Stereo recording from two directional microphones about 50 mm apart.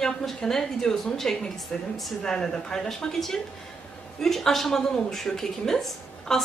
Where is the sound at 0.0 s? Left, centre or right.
Centre.